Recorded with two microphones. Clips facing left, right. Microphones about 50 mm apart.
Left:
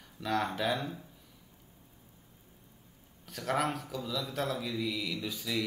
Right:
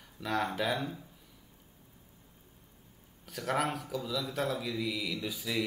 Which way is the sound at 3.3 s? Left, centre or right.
Centre.